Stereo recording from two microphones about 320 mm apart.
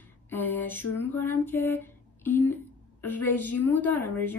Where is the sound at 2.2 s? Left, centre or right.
Centre.